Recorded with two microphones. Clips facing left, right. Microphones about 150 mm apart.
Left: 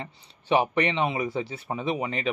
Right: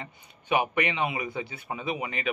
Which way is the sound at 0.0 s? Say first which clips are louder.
Left 3 dB; 30° left (ahead or behind).